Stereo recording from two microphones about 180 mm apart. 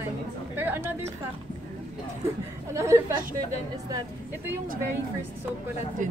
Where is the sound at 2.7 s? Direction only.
15° right (ahead or behind).